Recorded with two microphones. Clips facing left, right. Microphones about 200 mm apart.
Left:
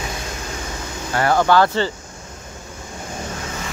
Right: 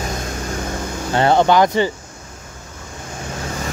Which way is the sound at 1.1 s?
25° right (ahead or behind).